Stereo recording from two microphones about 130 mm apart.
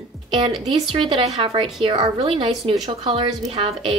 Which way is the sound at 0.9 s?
40° right (ahead or behind).